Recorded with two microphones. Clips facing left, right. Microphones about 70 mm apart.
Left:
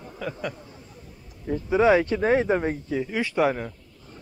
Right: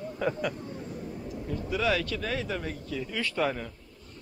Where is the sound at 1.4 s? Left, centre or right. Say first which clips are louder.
Left 9 dB; left.